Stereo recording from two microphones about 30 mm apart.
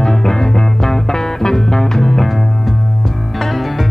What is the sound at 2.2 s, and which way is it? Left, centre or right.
Music, centre.